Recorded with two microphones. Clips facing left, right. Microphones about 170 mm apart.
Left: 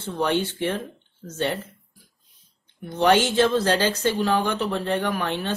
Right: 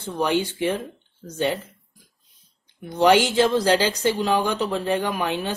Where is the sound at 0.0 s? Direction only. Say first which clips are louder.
Right 1 dB; 10° right (ahead or behind).